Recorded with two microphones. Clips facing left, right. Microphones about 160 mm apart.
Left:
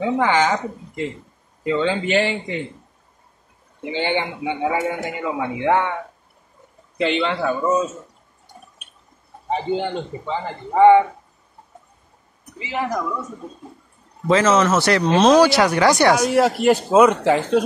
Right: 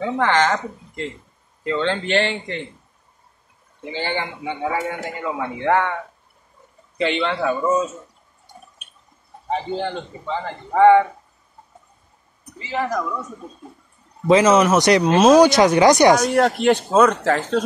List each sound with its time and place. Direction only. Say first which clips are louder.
0.0 s a man's voice: left 1 dB; 10° left (ahead or behind)
3.8 s a man's voice: left 3 dB; 20° left (ahead or behind)
7.0 s a man's voice: left 1 dB; centre (ahead or behind)
10.8 s a man's voice: left 1 dB; 15° left (ahead or behind)
12.5 s a man's voice: right 1 dB; 15° left (ahead or behind)
14.2 s speech: right 2 dB; 15° right (ahead or behind)
16.2 s a man's voice: left 1 dB; 5° left (ahead or behind)